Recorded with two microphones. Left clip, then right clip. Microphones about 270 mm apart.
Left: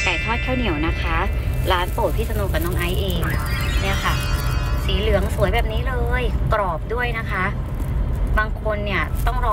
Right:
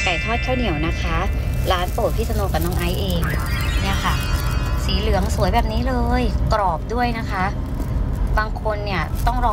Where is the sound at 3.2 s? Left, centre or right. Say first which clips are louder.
Even; centre.